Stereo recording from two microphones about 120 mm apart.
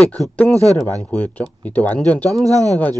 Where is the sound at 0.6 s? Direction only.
65° left (ahead or behind).